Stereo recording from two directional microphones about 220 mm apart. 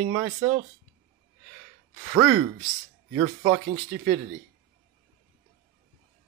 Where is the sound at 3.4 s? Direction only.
30° right (ahead or behind).